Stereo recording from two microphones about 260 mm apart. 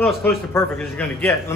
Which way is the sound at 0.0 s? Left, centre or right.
Centre.